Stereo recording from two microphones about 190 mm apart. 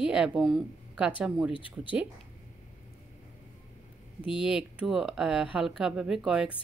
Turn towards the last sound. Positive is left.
turn(degrees=-5)  # may be behind; listen again after turning